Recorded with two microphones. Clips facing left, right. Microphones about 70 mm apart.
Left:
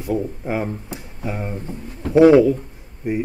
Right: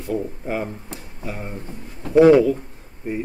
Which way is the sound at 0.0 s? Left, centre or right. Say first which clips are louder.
Left 2 dB; centre.